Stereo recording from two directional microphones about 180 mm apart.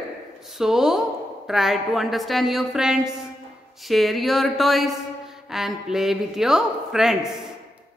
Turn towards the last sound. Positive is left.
turn(degrees=0)  # may be behind; listen again after turning